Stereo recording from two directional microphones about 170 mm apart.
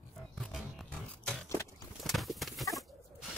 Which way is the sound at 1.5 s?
15° left (ahead or behind).